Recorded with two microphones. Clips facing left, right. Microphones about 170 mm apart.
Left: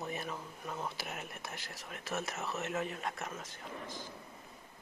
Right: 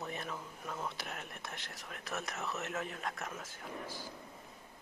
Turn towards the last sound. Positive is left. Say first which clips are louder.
# right 1 dB
turn(degrees=0)  # may be behind; listen again after turning